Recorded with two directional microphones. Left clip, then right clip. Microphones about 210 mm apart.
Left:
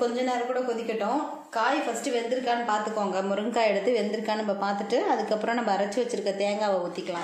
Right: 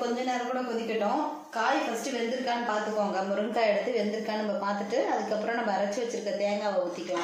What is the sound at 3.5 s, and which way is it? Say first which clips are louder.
A woman's voice: left 3 dB; 45° left (ahead or behind).